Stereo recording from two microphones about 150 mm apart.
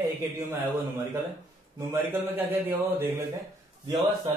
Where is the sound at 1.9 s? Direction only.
15° right (ahead or behind).